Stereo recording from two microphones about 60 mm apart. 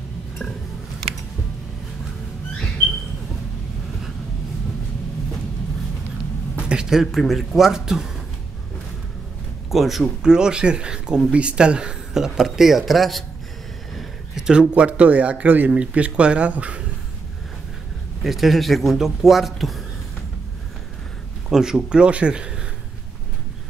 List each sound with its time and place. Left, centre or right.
6.7 s a man's voice: centre
9.7 s a man's voice: centre
10.2 s a man's voice: centre
18.2 s a man's voice: centre
21.5 s speech: centre